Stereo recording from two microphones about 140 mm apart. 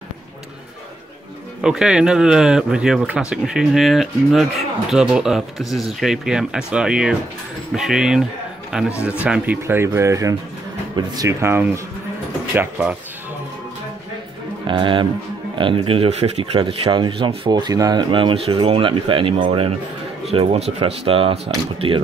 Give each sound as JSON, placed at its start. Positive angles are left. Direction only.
{"t": 1.6, "sound": "speech", "side_deg": -5}
{"t": 14.7, "sound": "speech", "side_deg": -35}
{"t": 16.5, "sound": "speech", "side_deg": -35}
{"t": 20.2, "sound": "speech", "side_deg": -45}